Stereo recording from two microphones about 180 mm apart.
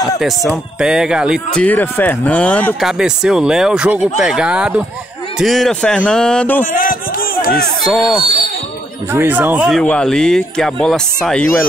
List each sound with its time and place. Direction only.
0.7 s speech: 5° right (ahead or behind)
1.6 s speech: 10° left (ahead or behind)
2.9 s speech: 5° right (ahead or behind)
6.6 s music: 50° left (ahead or behind)
7.8 s speech: centre (ahead or behind)
9.1 s speech: 10° right (ahead or behind)